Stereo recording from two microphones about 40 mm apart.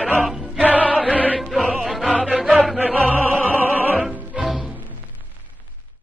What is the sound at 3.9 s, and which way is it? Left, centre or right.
Music, centre.